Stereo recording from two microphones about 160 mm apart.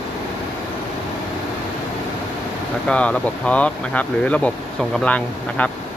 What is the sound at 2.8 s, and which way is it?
Speech, 5° left (ahead or behind).